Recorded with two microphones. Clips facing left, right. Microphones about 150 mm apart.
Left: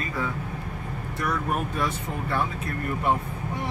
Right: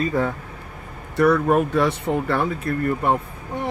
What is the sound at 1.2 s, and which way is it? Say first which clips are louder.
Speech: right 11 dB; 70° right (ahead or behind).